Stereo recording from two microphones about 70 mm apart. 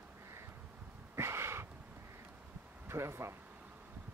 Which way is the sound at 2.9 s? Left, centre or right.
Right.